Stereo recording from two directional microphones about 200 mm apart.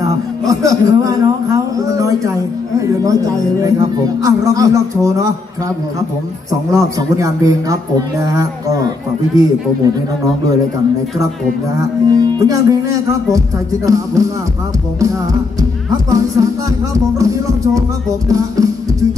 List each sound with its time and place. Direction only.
0.0 s a sound: 15° right (ahead or behind)
2.8 s a man's voice: 15° right (ahead or behind)
6.7 s a man's voice: 15° right (ahead or behind)
12.1 s a man's voice: 20° right (ahead or behind)
16.1 s a man's voice: 15° right (ahead or behind)
18.3 s music: 15° right (ahead or behind)